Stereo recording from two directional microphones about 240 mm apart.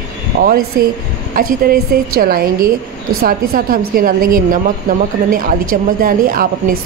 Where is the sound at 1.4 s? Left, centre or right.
Right.